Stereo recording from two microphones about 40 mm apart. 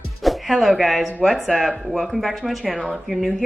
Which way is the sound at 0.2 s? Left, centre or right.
Centre.